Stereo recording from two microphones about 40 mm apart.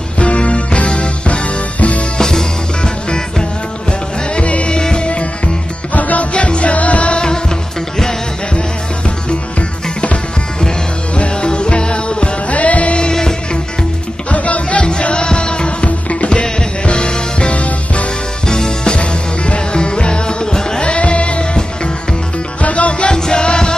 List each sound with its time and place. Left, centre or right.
0.2 s music: left
2.1 s music: centre
4.4 s music: left
5.9 s music: left
6.3 s music: left
11.1 s music: left
13.0 s music: centre
14.3 s music: left
14.8 s music: left
18.5 s music: left
20.8 s music: left
22.6 s music: left
23.1 s music: centre